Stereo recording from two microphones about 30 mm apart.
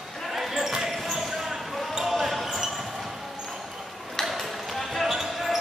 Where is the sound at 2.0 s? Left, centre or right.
Centre.